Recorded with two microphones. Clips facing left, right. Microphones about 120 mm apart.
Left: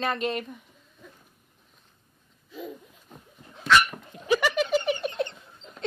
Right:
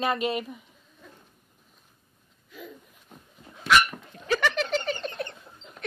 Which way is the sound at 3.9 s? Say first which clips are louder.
Left 3 dB; 10° left (ahead or behind).